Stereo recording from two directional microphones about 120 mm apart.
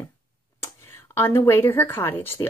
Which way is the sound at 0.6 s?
20° left (ahead or behind).